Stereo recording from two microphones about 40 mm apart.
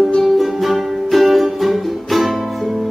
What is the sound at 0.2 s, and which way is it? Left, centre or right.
Music, centre.